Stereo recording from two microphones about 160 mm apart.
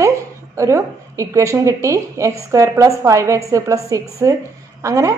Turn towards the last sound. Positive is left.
turn(degrees=-20)  # may be behind; listen again after turning